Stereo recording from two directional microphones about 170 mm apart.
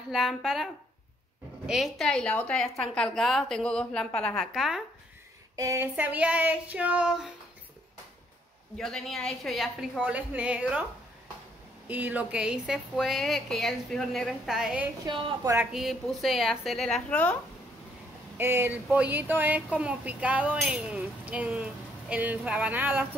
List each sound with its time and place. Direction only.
0.1 s a woman's voice: centre (ahead or behind)
1.7 s a woman's voice: centre (ahead or behind)
5.6 s speech: 15° right (ahead or behind)
8.7 s a woman's voice: 5° left (ahead or behind)
11.9 s a woman's voice: 10° right (ahead or behind)
15.0 s a woman's voice: 30° right (ahead or behind)
15.4 s speech: 15° right (ahead or behind)
15.7 s a woman's voice: centre (ahead or behind)
18.4 s speech: 15° right (ahead or behind)